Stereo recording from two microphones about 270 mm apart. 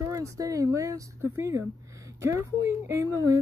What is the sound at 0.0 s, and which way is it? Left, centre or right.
Speech, centre.